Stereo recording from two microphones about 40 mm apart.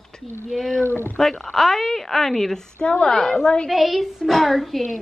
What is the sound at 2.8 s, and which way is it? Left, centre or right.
Speech, left.